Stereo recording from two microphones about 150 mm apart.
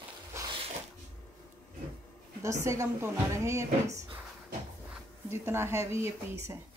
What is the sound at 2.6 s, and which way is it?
A woman's voice, 20° right (ahead or behind).